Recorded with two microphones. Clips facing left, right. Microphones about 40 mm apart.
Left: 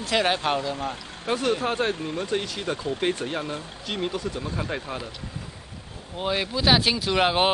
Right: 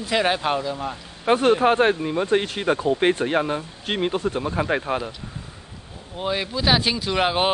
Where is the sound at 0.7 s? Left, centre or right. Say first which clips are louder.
Right 1 dB; centre.